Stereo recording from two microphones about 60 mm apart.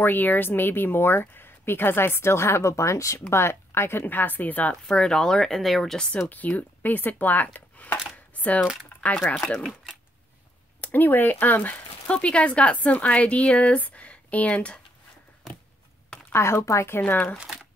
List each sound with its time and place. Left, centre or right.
0.0 s a woman's voice: left
4.8 s speech: centre
5.9 s speech: centre
6.2 s speech: left
9.2 s speech: left
10.8 s speech: left
16.3 s a sound: left
16.6 s a woman's voice: left
17.0 s speech: left